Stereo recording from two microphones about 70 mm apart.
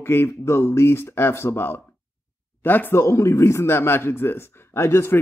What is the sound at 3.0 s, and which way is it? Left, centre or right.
A man's voice, left.